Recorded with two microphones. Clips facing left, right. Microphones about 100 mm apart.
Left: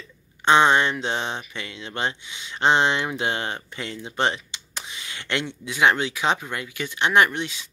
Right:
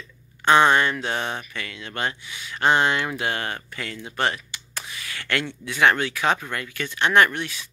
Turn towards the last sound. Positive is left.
turn(degrees=20)  # may be behind; listen again after turning